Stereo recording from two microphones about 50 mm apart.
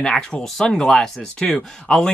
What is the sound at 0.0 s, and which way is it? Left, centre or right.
Speech, centre.